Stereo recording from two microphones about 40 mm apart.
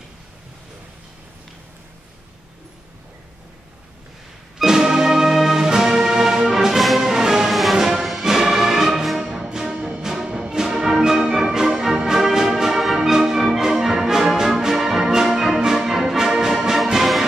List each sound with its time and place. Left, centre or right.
4.6 s music: centre